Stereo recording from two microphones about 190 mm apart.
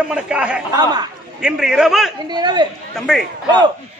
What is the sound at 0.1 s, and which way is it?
A man's voice, 5° right (ahead or behind).